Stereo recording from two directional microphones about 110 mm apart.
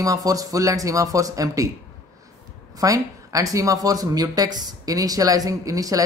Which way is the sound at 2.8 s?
30° right (ahead or behind).